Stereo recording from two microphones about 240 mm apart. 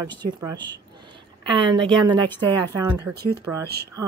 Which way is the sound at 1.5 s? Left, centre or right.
Centre.